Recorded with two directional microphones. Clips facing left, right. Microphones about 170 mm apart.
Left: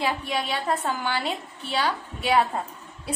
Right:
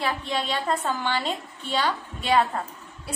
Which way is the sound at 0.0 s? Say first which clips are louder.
Left 1 dB; 10° left (ahead or behind).